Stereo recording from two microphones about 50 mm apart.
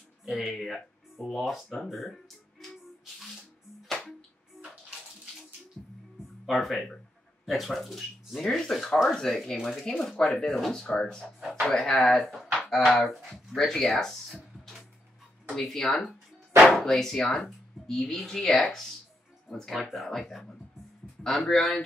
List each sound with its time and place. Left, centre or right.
0.3 s speech: centre
5.8 s music: centre
6.4 s speech: centre
10.1 s speech: left
11.4 s music: centre
11.7 s speech: centre
12.5 s a sound: centre
12.8 s speech: centre
15.5 s speech: centre